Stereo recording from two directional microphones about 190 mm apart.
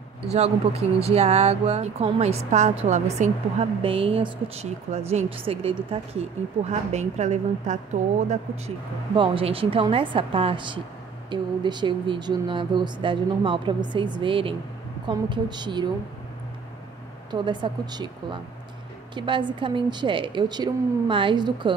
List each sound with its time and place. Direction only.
0.3 s a woman's voice: 35° right (ahead or behind)
9.1 s speech: 25° right (ahead or behind)
17.3 s speech: 25° right (ahead or behind)